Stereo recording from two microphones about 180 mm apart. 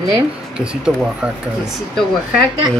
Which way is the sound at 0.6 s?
5° right (ahead or behind).